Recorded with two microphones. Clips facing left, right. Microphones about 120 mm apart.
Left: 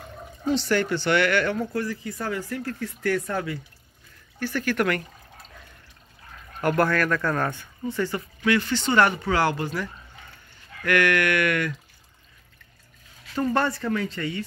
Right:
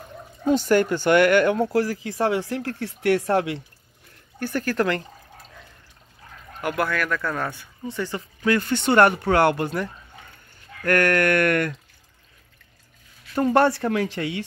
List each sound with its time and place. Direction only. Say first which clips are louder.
0.5 s speech: right 4 dB; 45° right (ahead or behind)
1.7 s speech: right 6 dB; 90° right
4.4 s speech: right 1 dB; 45° right (ahead or behind); by 5.0 s 30° right (ahead or behind)
6.6 s speech: left 3 dB; 5° right (ahead or behind)
7.5 s speech: left 2 dB; 15° right (ahead or behind)
8.4 s speech: right 2 dB; 40° right (ahead or behind)
10.8 s speech: right 2 dB; 45° right (ahead or behind)
13.5 s speech: right 6 dB; 65° right (ahead or behind)